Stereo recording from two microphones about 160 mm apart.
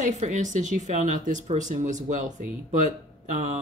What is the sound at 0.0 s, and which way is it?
Speech, 45° right (ahead or behind).